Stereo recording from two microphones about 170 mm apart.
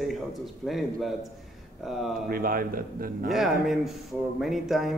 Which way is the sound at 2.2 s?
60° right (ahead or behind).